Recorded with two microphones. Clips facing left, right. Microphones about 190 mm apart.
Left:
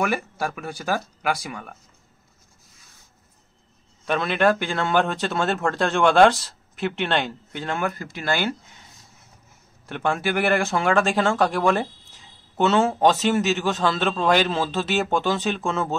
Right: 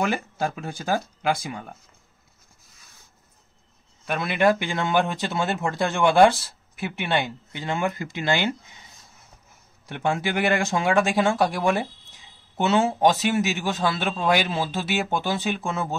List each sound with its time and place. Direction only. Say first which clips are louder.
0.0 s speech: even; 25° right (ahead or behind)
4.0 s speech: left 1 dB; 10° right (ahead or behind)
9.8 s speech: left 1 dB; 15° right (ahead or behind)